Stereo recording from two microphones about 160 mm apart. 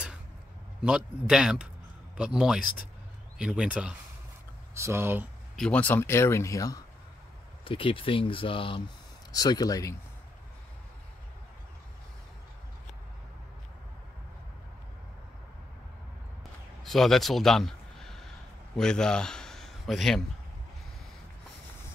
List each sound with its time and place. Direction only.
0.8 s a man's voice: 5° right (ahead or behind)
5.6 s speech: 10° left (ahead or behind)
7.6 s speech: 35° left (ahead or behind)
16.8 s a sound: centre (ahead or behind)
18.8 s speech: 5° left (ahead or behind)